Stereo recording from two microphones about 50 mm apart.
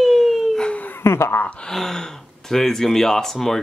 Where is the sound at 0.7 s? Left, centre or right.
Left.